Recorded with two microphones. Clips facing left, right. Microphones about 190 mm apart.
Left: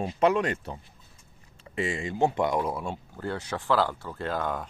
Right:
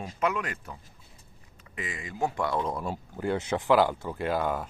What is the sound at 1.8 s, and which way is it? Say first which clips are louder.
Speech: left 6 dB; 30° left (ahead or behind).